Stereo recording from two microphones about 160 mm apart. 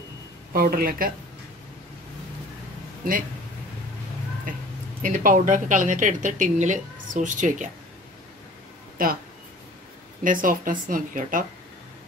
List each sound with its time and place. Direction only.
0.5 s speech: 70° right (ahead or behind)
5.0 s speech: 55° right (ahead or behind)
8.9 s speech: 65° right (ahead or behind)
10.2 s speech: 60° right (ahead or behind)